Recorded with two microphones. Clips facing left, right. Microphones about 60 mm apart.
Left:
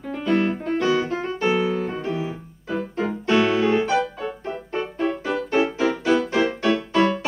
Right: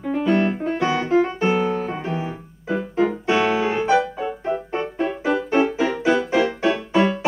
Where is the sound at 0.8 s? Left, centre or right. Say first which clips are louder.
Right 5 dB; right.